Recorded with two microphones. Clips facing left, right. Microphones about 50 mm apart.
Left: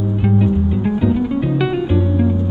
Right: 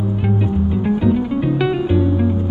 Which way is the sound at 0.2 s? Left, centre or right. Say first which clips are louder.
Left 5 dB; centre.